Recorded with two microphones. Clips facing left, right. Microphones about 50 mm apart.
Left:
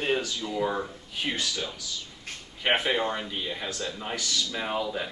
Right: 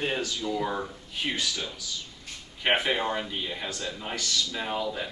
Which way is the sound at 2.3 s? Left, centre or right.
Left.